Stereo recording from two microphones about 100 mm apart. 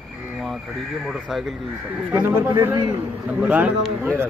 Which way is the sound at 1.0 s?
5° right (ahead or behind).